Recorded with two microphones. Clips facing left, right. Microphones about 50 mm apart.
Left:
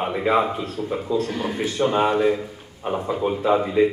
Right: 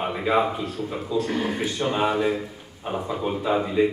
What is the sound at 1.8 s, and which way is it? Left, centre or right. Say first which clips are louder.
Speech: left 4 dB; centre.